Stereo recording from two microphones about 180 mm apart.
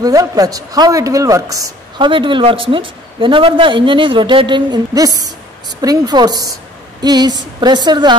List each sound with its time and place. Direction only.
0.0 s a man's voice: 20° right (ahead or behind)